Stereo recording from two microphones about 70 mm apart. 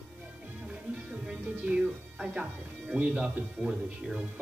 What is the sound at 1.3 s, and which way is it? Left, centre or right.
Speech, centre.